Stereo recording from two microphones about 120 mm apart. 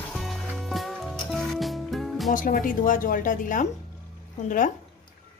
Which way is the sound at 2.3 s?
90° left.